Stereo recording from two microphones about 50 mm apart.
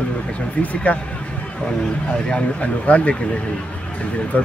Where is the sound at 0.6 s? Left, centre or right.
Left.